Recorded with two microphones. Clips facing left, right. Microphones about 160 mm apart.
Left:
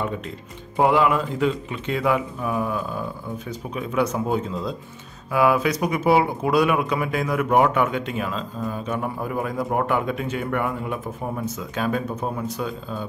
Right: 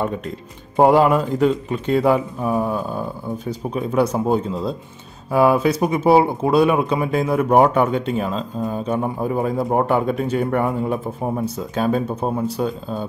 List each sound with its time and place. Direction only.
0.7 s speech: 40° right (ahead or behind)